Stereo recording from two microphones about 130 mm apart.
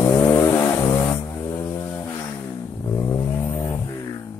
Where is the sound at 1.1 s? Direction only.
20° left (ahead or behind).